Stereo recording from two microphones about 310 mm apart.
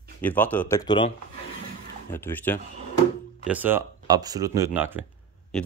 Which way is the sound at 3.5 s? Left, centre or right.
Centre.